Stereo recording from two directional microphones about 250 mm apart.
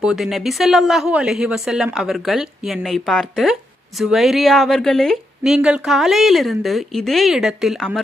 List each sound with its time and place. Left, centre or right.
0.0 s speech: centre